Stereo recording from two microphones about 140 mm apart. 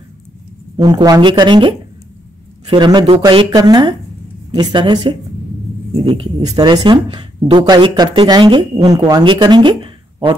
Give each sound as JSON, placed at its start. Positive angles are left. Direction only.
{"t": 0.7, "sound": "speech", "side_deg": -30}
{"t": 6.5, "sound": "speech", "side_deg": -30}